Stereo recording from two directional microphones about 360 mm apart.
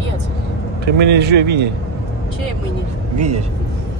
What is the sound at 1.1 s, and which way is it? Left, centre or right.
Speech, right.